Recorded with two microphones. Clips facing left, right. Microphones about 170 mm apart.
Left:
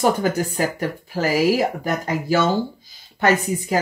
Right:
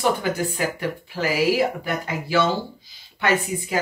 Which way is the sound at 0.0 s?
40° left (ahead or behind).